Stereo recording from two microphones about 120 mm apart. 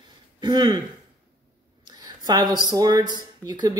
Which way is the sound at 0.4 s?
40° right (ahead or behind).